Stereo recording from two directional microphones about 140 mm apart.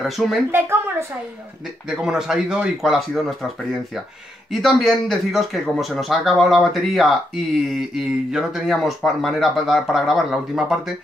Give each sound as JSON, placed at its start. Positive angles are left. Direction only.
{"t": 0.0, "sound": "speech", "side_deg": 0}
{"t": 0.5, "sound": "a sound", "side_deg": -15}
{"t": 1.9, "sound": "speech", "side_deg": -5}
{"t": 4.5, "sound": "speech", "side_deg": 0}